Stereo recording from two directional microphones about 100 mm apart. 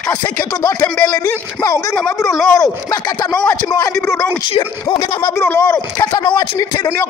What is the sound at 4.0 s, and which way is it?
Speech, 25° left (ahead or behind).